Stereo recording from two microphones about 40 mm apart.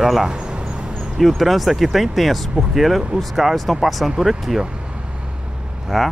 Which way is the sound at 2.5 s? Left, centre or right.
Centre.